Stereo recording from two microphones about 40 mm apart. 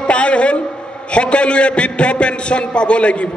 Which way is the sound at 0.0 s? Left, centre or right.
Left.